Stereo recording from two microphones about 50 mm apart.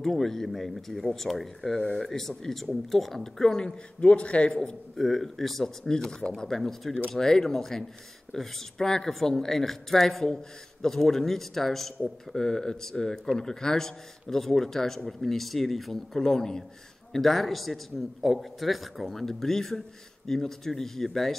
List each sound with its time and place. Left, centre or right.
0.0 s speech: centre
4.1 s a man's voice: left
4.6 s speech: centre